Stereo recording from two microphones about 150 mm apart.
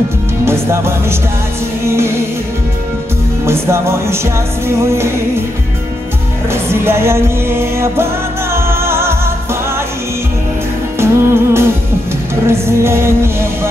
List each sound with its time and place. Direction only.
0.5 s music: 15° right (ahead or behind)
3.4 s music: 15° right (ahead or behind)
6.5 s music: 15° right (ahead or behind)
11.0 s music: 15° right (ahead or behind)